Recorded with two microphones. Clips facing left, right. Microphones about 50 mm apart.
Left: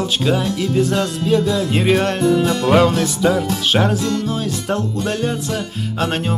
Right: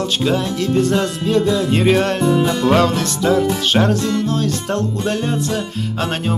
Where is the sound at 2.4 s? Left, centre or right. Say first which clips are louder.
Right 1 dB; right.